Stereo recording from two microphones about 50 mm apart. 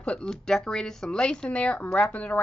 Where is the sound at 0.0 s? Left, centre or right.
Centre.